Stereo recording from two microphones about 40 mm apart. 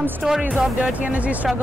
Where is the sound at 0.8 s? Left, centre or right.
Right.